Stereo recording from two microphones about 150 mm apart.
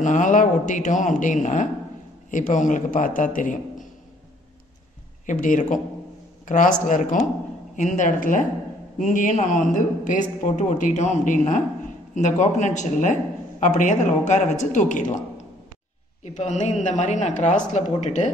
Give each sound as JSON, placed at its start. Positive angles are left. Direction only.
{"t": 0.0, "sound": "a man's voice", "side_deg": 55}
{"t": 5.2, "sound": "a man's voice", "side_deg": 60}
{"t": 16.3, "sound": "a man's voice", "side_deg": 50}